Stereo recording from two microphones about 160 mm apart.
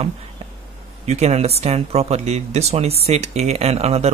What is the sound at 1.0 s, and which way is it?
Speech, 45° right (ahead or behind).